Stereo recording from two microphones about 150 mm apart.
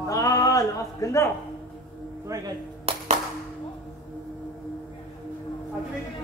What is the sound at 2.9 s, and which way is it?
Music, 40° right (ahead or behind).